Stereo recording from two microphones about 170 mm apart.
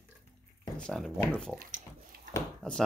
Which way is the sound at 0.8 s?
5° left (ahead or behind).